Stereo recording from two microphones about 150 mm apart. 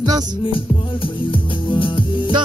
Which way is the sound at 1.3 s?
35° left (ahead or behind).